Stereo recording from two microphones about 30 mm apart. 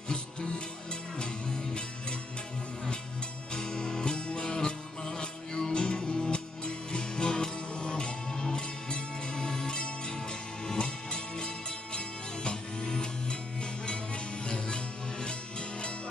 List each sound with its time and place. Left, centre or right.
0.1 s music: left
3.5 s music: left